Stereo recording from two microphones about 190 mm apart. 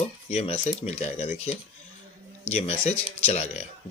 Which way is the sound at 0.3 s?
35° left (ahead or behind).